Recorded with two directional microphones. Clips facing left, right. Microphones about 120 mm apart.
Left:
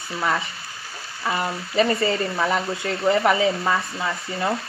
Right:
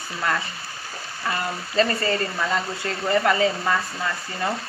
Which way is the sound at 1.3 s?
15° left (ahead or behind).